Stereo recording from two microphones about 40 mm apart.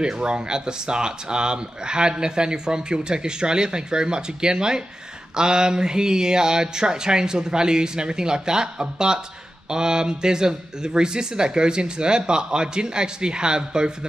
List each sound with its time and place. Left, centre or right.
0.0 s speech: right